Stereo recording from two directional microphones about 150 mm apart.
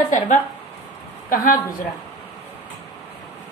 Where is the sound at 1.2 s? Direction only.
65° left (ahead or behind).